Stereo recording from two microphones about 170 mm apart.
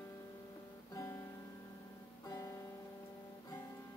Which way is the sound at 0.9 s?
20° left (ahead or behind).